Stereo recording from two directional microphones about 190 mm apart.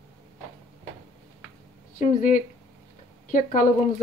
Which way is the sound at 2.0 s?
45° left (ahead or behind).